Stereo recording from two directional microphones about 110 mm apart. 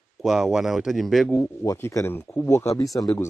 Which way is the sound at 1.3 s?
25° left (ahead or behind).